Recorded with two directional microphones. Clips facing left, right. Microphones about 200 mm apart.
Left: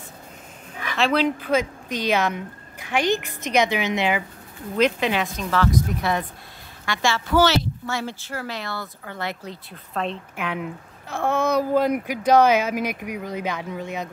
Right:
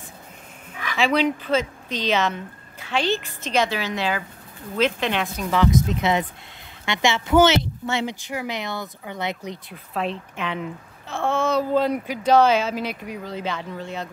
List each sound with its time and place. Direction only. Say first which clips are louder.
0.9 s speech: even; centre (ahead or behind)
1.4 s speech: left 1 dB; 10° left (ahead or behind)
4.8 s speech: left 1 dB; centre (ahead or behind)
5.3 s speech: right 2 dB; 15° right (ahead or behind)
10.3 s speech: even; 10° left (ahead or behind)